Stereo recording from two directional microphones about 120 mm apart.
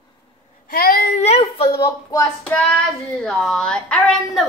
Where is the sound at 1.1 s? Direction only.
65° left (ahead or behind).